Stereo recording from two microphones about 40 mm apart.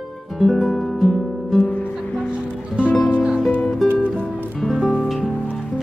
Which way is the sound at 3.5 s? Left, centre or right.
Left.